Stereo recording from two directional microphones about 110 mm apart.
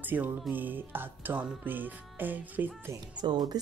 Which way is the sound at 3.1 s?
40° right (ahead or behind).